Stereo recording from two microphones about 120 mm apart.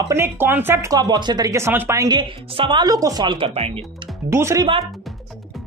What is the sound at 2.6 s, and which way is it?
Speech, 40° right (ahead or behind).